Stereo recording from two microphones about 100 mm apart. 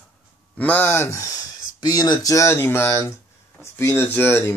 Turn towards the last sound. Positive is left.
turn(degrees=20)  # may be behind; listen again after turning